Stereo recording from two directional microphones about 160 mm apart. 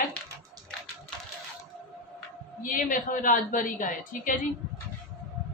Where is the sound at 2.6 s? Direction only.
55° left (ahead or behind).